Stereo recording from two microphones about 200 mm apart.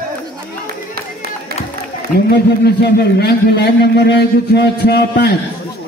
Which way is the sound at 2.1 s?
50° left (ahead or behind).